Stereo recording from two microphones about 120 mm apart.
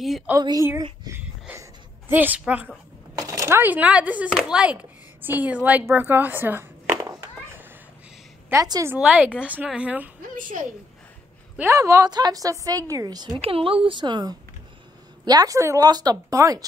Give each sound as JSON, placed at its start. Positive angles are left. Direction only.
{"t": 0.4, "sound": "speech", "side_deg": -30}
{"t": 1.0, "sound": "a sound", "side_deg": -25}
{"t": 3.2, "sound": "speech", "side_deg": -25}
{"t": 8.5, "sound": "a woman's voice", "side_deg": -20}
{"t": 9.0, "sound": "speech", "side_deg": -10}
{"t": 10.3, "sound": "a woman's voice", "side_deg": -90}
{"t": 11.7, "sound": "a woman's voice", "side_deg": -25}
{"t": 13.4, "sound": "speech", "side_deg": -50}
{"t": 13.8, "sound": "speech", "side_deg": -40}